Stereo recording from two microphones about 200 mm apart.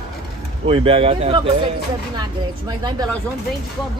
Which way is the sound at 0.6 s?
25° right (ahead or behind).